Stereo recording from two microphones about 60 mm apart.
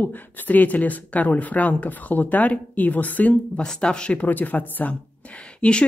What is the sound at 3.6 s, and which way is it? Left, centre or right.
Speech, centre.